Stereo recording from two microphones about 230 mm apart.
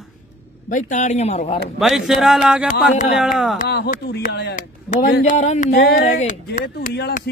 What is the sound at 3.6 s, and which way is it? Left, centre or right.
Speech, left.